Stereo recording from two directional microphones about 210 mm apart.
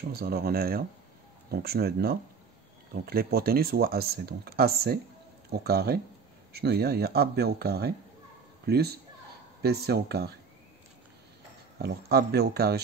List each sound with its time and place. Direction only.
0.1 s speech: 45° right (ahead or behind)
11.8 s speech: 50° right (ahead or behind)